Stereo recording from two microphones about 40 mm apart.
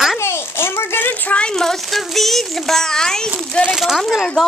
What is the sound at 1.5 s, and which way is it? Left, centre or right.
A child's voice, centre.